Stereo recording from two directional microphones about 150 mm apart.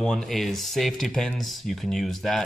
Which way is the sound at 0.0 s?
5° left (ahead or behind).